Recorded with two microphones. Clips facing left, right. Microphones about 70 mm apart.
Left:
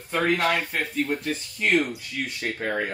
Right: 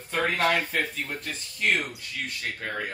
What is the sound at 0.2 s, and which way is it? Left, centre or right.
Speech, centre.